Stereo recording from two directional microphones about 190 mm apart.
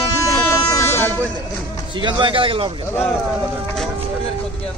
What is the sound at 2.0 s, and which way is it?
Speech, 25° right (ahead or behind).